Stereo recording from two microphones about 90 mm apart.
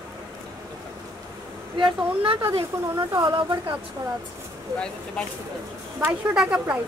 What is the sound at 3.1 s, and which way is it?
Speech, 55° right (ahead or behind).